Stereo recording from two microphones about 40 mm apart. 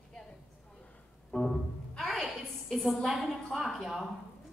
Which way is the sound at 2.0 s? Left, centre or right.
Centre.